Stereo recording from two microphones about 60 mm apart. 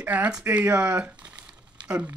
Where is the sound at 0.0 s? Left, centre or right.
Right.